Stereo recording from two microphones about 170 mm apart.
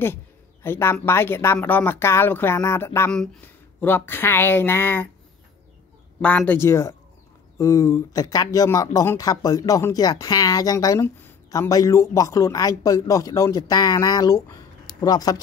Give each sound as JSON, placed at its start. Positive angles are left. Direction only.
{"t": 0.0, "sound": "speech", "side_deg": 15}
{"t": 6.2, "sound": "speech", "side_deg": 10}